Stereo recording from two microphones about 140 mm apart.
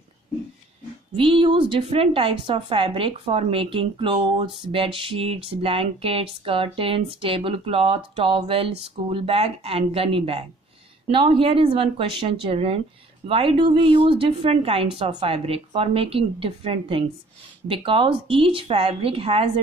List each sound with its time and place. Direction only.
1.1 s a woman's voice: 40° right (ahead or behind)